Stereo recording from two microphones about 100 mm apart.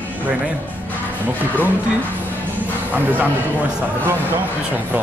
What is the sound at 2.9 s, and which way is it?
Speech, 15° right (ahead or behind).